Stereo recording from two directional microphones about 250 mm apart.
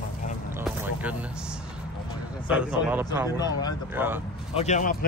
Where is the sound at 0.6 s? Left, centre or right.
Centre.